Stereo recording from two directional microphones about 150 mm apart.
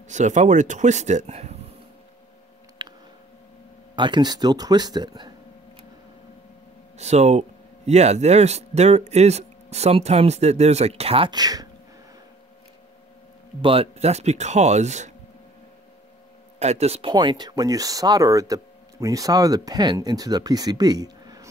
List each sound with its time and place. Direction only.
0.1 s speech: 50° right (ahead or behind)
2.8 s a sound: 30° right (ahead or behind)
3.9 s speech: 30° right (ahead or behind)
7.0 s speech: 50° right (ahead or behind); by 11.7 s 25° right (ahead or behind)
13.6 s speech: 40° right (ahead or behind)
16.5 s speech: 45° right (ahead or behind)
17.1 s speech: 30° right (ahead or behind)